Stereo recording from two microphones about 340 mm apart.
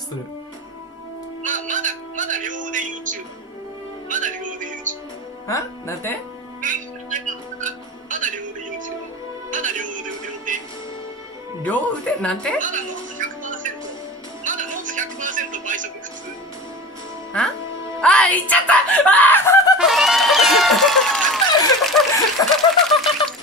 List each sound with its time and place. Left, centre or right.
1.4 s music: right
4.1 s speech: right
5.5 s speech: centre
6.6 s music: right
11.6 s a woman's voice: centre
12.5 s music: right
17.3 s a woman's voice: centre
19.8 s a sound: centre